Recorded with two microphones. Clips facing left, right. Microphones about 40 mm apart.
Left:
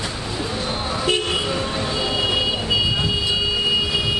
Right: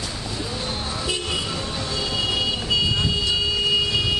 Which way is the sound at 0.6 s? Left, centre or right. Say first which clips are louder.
Left 7 dB; centre.